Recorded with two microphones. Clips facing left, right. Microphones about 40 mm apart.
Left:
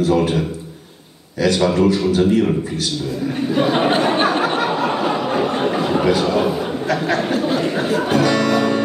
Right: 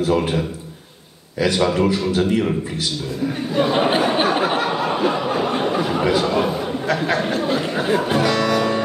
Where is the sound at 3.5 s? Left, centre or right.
Centre.